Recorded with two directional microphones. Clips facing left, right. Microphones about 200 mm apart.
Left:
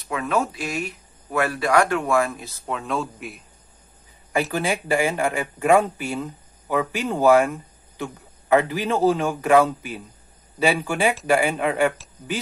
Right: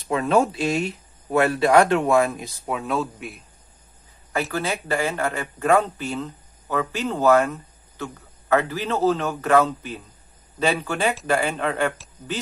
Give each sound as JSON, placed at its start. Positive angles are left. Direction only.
{"t": 0.1, "sound": "speech", "side_deg": -30}
{"t": 4.3, "sound": "a man's voice", "side_deg": 15}